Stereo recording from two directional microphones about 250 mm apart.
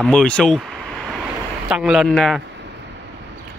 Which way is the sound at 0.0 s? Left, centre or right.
Centre.